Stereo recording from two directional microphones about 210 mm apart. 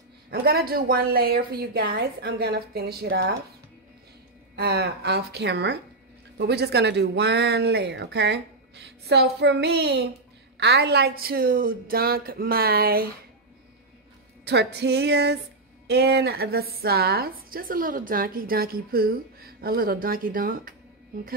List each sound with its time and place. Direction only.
0.3 s a woman's voice: 45° right (ahead or behind)
4.6 s a woman's voice: 50° right (ahead or behind)
14.4 s a woman's voice: 55° right (ahead or behind)